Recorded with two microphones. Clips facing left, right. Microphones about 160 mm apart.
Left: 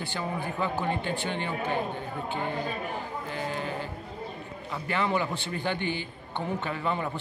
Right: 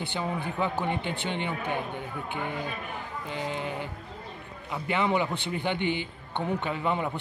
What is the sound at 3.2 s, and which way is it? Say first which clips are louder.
A man's voice: right 2 dB; 20° right (ahead or behind).